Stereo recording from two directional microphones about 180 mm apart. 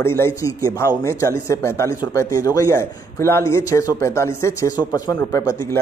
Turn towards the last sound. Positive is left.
turn(degrees=15)  # may be behind; listen again after turning